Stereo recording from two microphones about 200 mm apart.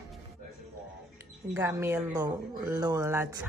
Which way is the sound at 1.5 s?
10° right (ahead or behind).